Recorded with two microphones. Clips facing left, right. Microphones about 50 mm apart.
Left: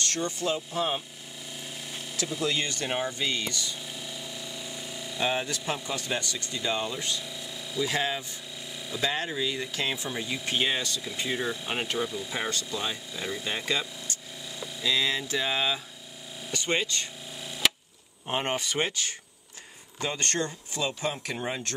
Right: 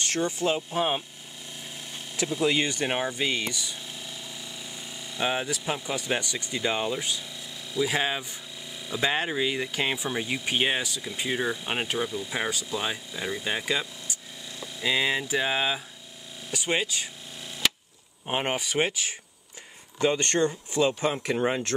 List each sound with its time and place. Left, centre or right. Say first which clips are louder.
0.0 s speech: right 3 dB; centre
2.1 s speech: right 4 dB; centre
4.0 s a sound: left 1 dB; centre
5.2 s speech: right 1 dB; centre
9.0 s speech: right 3 dB; right
9.6 s speech: right 3 dB; centre
18.2 s speech: right 1 dB; centre
20.0 s speech: right 6 dB; right